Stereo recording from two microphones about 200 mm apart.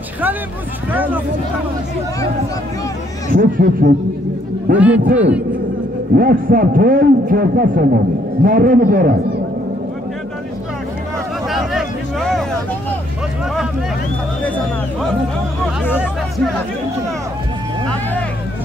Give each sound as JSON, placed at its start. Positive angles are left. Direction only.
{"t": 0.9, "sound": "speech", "side_deg": -10}
{"t": 3.3, "sound": "a man's voice", "side_deg": -45}
{"t": 4.7, "sound": "speech", "side_deg": -5}
{"t": 6.1, "sound": "a man's voice", "side_deg": -45}
{"t": 11.4, "sound": "a sound", "side_deg": 0}
{"t": 15.9, "sound": "speech", "side_deg": -5}